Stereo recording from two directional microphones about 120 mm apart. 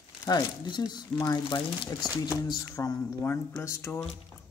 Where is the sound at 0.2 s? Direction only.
35° left (ahead or behind).